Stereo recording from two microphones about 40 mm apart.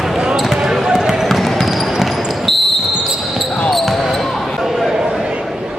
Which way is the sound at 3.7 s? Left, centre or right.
Centre.